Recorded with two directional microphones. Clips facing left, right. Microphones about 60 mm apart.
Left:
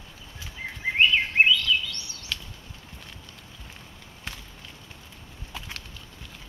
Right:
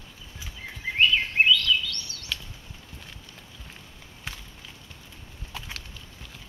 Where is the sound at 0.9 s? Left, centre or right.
Left.